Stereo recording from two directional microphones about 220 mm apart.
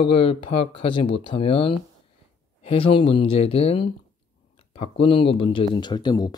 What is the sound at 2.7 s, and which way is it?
Speech, 25° left (ahead or behind).